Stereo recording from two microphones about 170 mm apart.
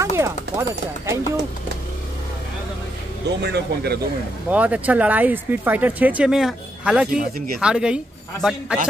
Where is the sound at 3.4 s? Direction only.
75° right (ahead or behind).